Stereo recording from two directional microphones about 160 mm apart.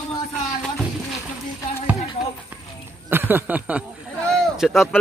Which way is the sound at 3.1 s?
10° right (ahead or behind).